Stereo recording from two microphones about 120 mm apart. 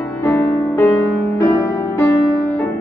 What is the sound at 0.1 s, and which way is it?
Music, 25° left (ahead or behind).